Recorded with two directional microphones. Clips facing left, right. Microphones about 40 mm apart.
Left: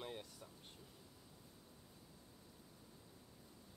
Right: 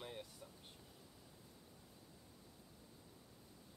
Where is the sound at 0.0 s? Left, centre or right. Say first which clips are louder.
Left 1 dB; centre.